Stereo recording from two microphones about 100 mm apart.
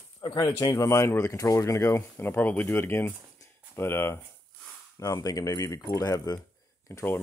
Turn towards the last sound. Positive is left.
turn(degrees=25)  # may be behind; listen again after turning